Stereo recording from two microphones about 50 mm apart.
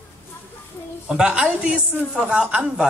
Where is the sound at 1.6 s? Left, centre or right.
Right.